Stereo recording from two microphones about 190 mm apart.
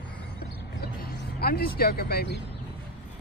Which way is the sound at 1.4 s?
50° left (ahead or behind).